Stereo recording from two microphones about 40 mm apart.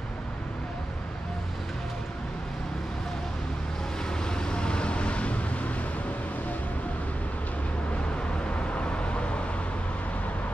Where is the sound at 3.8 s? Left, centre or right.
Centre; by 6.6 s left.